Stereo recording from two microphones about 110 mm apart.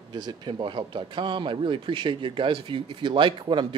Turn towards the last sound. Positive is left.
turn(degrees=-45)  # may be behind; listen again after turning